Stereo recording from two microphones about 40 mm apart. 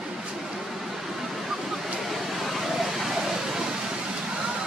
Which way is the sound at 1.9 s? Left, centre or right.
Centre.